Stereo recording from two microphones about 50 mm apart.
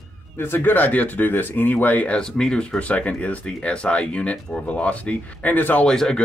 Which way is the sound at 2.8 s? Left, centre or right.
Left.